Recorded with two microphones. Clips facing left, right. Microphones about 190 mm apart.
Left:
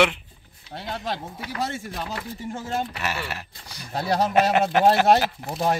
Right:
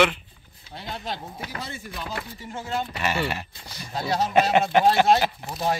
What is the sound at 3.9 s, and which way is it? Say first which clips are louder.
Speech: left 2 dB; 60° left (ahead or behind).